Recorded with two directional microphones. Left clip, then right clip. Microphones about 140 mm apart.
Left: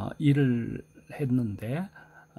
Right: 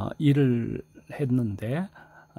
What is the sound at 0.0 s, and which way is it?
Speech, 30° right (ahead or behind).